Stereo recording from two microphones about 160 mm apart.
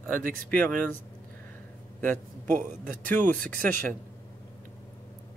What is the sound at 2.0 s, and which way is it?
Speech, 10° left (ahead or behind).